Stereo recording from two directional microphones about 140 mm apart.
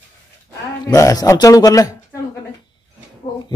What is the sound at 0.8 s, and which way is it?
A man's voice, 25° left (ahead or behind).